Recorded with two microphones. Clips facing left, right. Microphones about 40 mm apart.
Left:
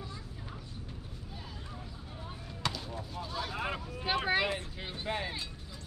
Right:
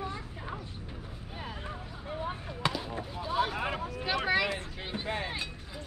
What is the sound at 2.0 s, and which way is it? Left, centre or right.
Basketball bounce, right.